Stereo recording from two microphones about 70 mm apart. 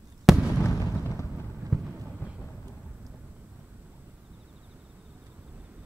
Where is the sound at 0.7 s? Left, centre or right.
Left.